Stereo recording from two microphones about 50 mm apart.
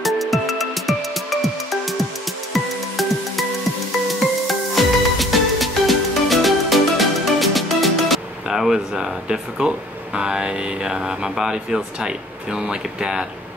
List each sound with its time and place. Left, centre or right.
0.0 s music: centre
4.5 s music: centre
11.5 s speech: centre